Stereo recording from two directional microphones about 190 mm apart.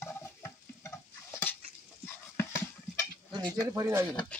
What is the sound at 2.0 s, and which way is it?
Dog, 15° left (ahead or behind).